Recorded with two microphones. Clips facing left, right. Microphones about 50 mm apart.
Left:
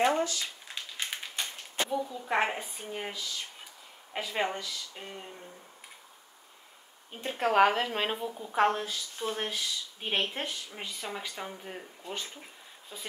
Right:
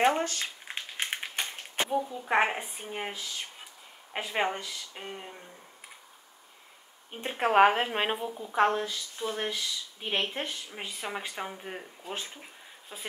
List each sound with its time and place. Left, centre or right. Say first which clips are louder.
0.0 s a sound: right 1 dB; right
3.1 s speech: even; right
7.1 s speech: right 1 dB; right
8.4 s a woman's voice: right 1 dB; centre; by 11.8 s right
12.9 s speech: right 2 dB; right